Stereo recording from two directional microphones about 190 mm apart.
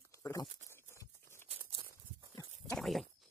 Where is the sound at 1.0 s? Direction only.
15° left (ahead or behind).